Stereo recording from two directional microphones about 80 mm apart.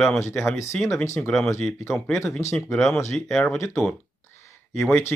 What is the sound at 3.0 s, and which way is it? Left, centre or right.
Speech, left.